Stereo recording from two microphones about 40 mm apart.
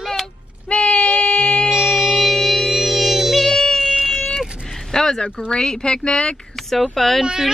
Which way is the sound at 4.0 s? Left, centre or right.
Centre.